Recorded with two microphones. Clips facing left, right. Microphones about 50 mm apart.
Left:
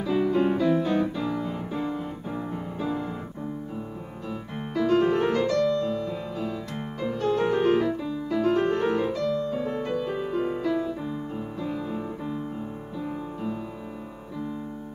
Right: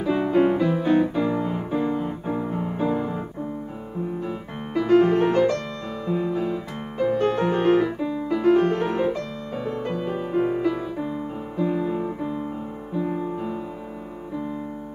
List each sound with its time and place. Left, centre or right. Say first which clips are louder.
0.0 s music: right 3 dB; right
4.7 s music: right 4 dB; right
5.5 s music: left 4 dB; right
7.8 s piano: right 3 dB; right
9.1 s music: left 4 dB; right
9.8 s music: right 1 dB; centre
10.1 s music: right 4 dB; right
10.7 s music: even; centre